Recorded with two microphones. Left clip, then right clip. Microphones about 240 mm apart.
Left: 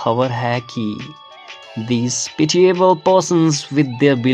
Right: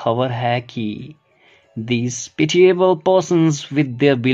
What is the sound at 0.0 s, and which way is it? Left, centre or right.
Speech, centre.